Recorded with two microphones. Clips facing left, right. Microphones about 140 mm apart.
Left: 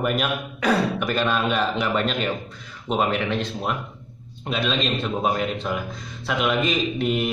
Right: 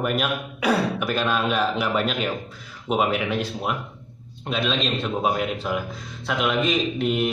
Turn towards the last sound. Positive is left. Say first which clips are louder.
# even
turn(degrees=0)  # may be behind; listen again after turning